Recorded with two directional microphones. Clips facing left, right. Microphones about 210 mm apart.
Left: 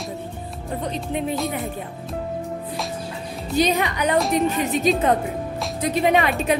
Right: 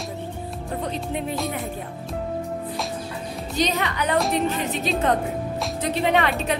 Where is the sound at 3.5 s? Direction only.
10° left (ahead or behind).